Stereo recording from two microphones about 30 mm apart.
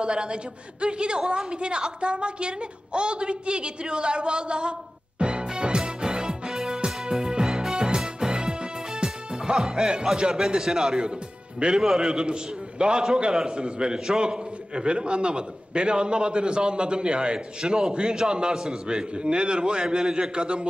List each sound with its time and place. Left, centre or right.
0.0 s a man's voice: right
5.2 s music: right
7.4 s music: centre
7.7 s music: right
9.8 s a man's voice: right
12.1 s a man's voice: right